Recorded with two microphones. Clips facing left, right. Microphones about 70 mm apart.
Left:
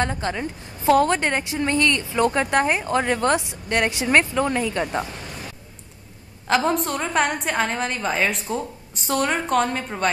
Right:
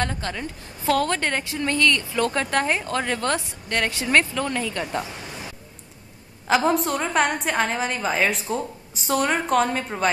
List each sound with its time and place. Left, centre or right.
0.0 s a woman's voice: centre
6.4 s a woman's voice: centre